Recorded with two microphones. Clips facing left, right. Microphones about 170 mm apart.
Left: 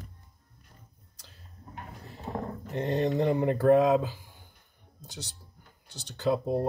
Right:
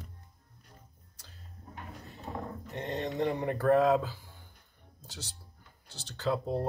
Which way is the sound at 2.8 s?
20° left (ahead or behind).